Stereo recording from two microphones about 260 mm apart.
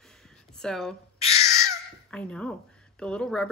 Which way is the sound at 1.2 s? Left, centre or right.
Left.